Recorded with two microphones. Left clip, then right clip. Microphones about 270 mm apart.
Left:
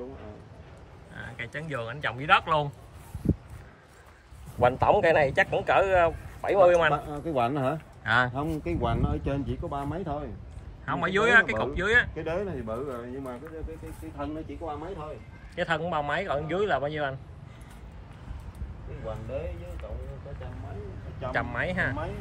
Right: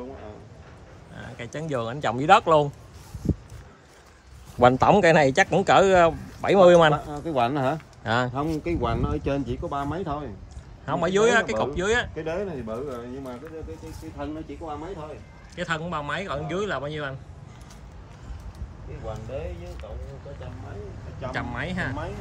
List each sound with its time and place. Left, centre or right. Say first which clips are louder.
1.1 s speech: right 1 dB; centre
4.7 s speech: right 4 dB; right
7.0 s speech: right 3 dB; centre
19.0 s speech: right 1 dB; centre
21.2 s speech: left 1 dB; centre